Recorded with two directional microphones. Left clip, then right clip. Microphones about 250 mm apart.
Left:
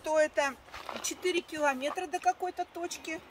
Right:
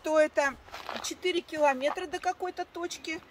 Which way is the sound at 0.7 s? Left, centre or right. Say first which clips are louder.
Right 1 dB; centre.